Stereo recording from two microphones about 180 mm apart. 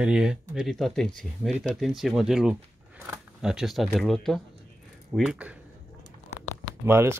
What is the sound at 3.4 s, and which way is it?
Speech, 5° right (ahead or behind).